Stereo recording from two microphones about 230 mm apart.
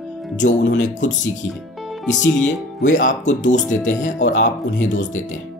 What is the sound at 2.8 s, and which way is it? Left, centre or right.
Speech, left.